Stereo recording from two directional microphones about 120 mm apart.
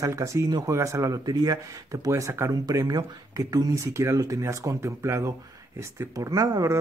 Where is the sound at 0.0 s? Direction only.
25° right (ahead or behind).